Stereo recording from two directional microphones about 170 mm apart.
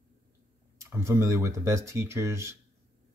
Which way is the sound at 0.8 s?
15° right (ahead or behind).